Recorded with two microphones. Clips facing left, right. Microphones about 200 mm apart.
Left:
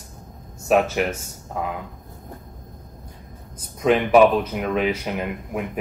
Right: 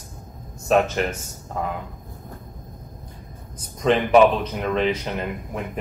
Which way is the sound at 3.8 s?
5° left (ahead or behind).